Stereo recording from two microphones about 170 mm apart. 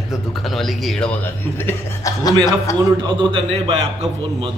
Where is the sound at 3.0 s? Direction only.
30° right (ahead or behind).